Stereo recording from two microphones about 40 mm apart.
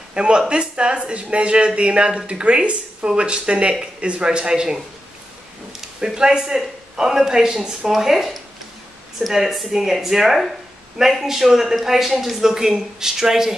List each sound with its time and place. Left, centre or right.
0.1 s speech: right
5.9 s speech: centre